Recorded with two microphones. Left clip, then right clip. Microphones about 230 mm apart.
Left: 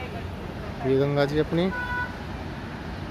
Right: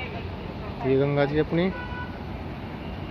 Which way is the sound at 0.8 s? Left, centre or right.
Left.